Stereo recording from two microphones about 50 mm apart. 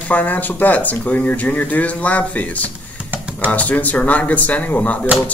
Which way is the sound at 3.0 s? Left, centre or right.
Right.